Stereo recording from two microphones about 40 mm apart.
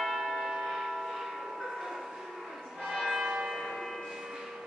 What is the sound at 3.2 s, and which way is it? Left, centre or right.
Church bell, centre.